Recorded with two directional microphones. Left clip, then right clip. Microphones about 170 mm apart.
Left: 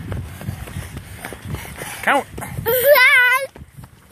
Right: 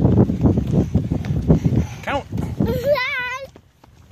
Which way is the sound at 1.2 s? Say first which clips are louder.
Right 8 dB; 5° right (ahead or behind).